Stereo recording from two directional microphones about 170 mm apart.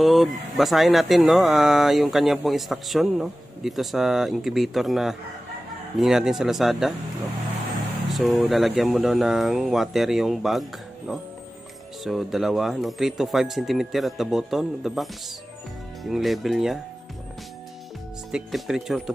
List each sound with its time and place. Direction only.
0.0 s speech: centre (ahead or behind)
8.1 s speech: centre (ahead or behind)
18.3 s speech: centre (ahead or behind)